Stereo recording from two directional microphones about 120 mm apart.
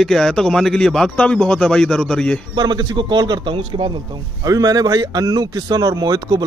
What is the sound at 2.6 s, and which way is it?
Speech, 35° right (ahead or behind).